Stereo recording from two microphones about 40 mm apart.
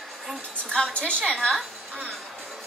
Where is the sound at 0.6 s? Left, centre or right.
Left.